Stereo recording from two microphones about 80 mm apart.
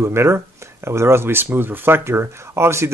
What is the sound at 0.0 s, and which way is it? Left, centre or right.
Speech, right.